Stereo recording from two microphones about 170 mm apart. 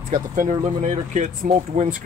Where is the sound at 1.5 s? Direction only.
45° right (ahead or behind).